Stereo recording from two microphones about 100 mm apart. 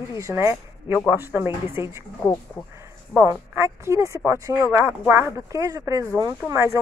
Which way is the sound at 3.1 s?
25° right (ahead or behind).